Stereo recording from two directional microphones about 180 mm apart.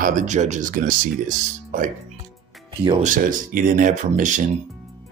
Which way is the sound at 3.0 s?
45° right (ahead or behind).